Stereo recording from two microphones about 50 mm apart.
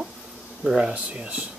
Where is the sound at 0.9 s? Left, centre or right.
Right.